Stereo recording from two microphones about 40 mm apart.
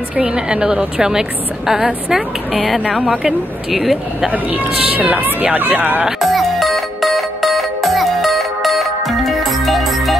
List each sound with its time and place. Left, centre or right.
0.1 s a woman's voice: right
2.5 s speech: centre
4.9 s speech: right
6.2 s music: centre